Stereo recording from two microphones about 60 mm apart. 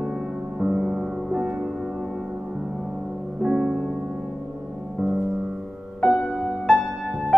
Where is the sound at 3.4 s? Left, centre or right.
Centre.